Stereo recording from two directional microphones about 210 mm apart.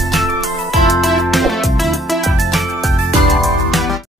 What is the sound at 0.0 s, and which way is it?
Music, centre (ahead or behind).